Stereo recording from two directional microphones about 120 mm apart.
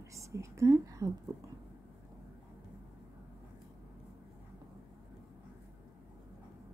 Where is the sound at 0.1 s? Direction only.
25° right (ahead or behind).